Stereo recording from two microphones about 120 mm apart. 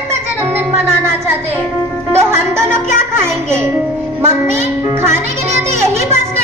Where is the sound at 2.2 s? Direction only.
20° right (ahead or behind).